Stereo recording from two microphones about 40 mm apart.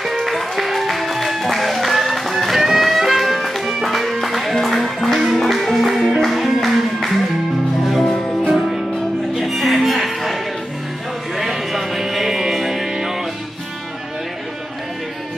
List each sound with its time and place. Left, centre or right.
0.0 s music: centre
8.0 s music: centre
8.5 s music: centre
11.3 s music: centre